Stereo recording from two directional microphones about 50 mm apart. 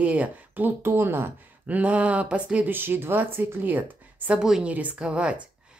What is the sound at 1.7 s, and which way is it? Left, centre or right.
Speech, right.